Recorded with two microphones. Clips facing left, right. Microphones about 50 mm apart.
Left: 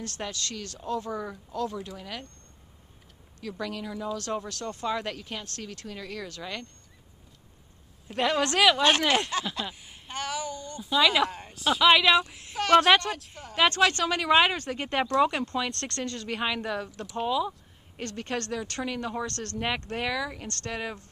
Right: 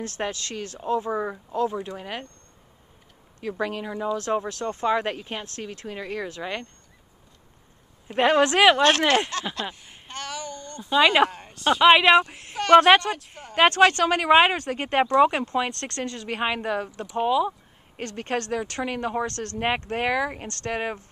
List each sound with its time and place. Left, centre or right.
0.2 s speech: right
3.3 s speech: right
8.2 s speech: right
9.3 s speech: centre
10.0 s a sound: centre
11.3 s speech: centre
11.8 s speech: right
12.7 s speech: right
15.7 s speech: centre
16.3 s speech: right
16.9 s speech: centre
17.3 s speech: right
18.1 s speech: right